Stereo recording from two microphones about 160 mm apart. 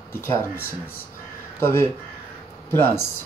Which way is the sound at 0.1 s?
15° left (ahead or behind).